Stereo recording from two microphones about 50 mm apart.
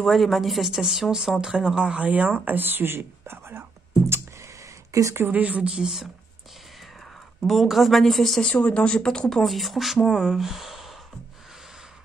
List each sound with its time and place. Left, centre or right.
0.0 s speech: centre
2.0 s speech: right
4.4 s a sound: right
5.3 s speech: right
5.8 s speech: centre
7.4 s speech: centre
8.5 s speech: left
9.4 s speech: centre